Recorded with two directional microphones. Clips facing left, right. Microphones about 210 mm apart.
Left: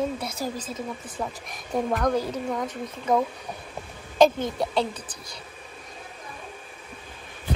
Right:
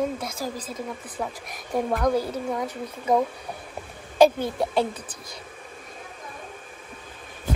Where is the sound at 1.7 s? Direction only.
10° right (ahead or behind).